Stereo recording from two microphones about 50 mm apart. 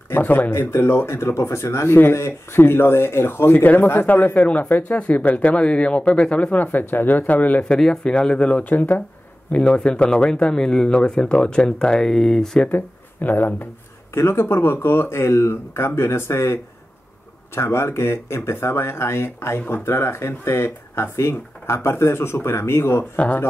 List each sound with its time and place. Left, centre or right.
0.2 s speech: left
0.5 s speech: left
3.5 s speech: left
6.6 s speech: left
7.8 s speech: centre
8.6 s speech: left
9.5 s speech: left
12.7 s speech: left
14.1 s speech: left
17.6 s speech: left